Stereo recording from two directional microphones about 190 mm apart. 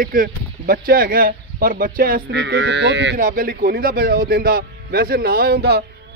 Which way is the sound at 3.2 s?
50° right (ahead or behind).